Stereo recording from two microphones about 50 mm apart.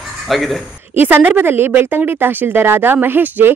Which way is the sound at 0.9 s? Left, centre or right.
Right.